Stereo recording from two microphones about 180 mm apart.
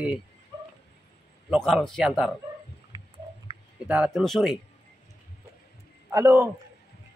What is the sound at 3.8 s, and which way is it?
Speech, 5° right (ahead or behind).